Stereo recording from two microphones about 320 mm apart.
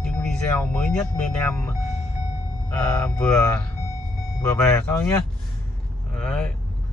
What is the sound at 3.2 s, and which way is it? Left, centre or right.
Speech, centre.